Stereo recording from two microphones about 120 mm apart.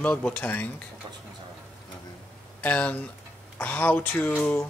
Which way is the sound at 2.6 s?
10° left (ahead or behind).